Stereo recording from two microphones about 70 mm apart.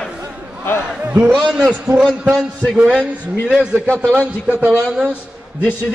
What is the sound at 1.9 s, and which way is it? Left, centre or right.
Speech, right.